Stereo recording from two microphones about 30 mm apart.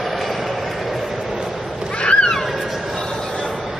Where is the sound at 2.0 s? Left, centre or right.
Left.